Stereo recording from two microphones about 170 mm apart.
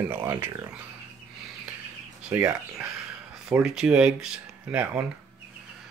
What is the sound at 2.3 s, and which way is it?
Speech, 10° right (ahead or behind).